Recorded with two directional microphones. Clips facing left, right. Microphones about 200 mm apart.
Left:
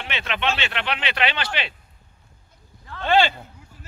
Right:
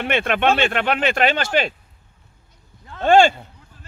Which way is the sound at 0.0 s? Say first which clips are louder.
Right 8 dB; 50° right (ahead or behind).